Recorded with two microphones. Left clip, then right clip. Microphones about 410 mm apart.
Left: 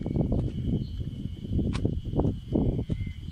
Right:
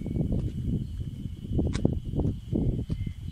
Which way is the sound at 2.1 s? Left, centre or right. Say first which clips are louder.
Left 3 dB; left.